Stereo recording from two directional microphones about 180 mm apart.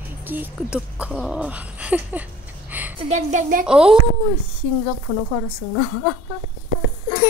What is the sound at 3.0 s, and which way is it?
Speech, 40° right (ahead or behind).